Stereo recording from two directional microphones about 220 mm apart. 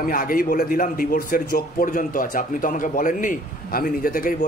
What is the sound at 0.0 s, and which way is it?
A man's voice, 40° left (ahead or behind).